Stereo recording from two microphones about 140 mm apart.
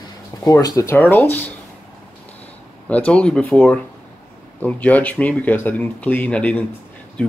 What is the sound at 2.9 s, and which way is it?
Speech, 10° left (ahead or behind).